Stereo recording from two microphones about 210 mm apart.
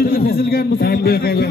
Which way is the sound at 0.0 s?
45° left (ahead or behind).